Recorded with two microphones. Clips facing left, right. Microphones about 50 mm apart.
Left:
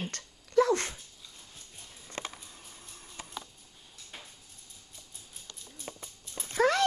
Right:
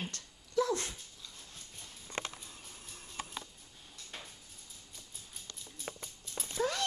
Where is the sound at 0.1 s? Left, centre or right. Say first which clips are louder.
Left 8 dB; left.